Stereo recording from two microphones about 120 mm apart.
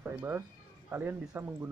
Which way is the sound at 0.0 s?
15° right (ahead or behind).